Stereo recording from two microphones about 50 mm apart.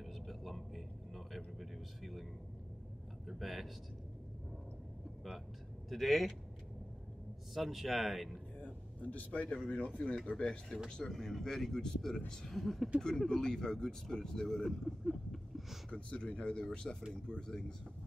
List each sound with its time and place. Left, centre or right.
0.0 s vehicle: centre
3.3 s a sound: centre
5.9 s speech: centre
7.5 s speech: centre
8.6 s a sound: left
9.7 s speech: left
10.3 s speech: centre
12.5 s speech: centre
15.9 s speech: left